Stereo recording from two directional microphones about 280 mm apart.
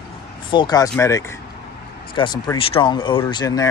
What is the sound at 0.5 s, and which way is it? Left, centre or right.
Speech, centre.